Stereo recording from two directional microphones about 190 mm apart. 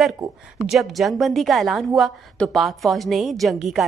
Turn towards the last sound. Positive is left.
turn(degrees=0)  # may be behind; listen again after turning